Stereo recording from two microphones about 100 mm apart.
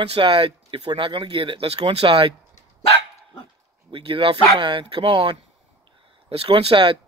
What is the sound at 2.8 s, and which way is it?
Dog, 75° left (ahead or behind).